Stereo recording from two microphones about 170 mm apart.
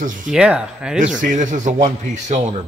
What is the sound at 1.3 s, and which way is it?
Speech, 45° right (ahead or behind).